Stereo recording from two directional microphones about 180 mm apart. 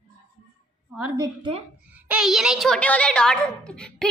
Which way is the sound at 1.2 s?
25° right (ahead or behind).